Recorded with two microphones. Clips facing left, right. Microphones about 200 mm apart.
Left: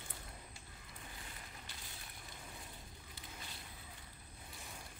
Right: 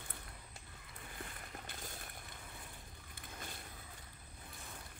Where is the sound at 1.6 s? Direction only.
50° right (ahead or behind).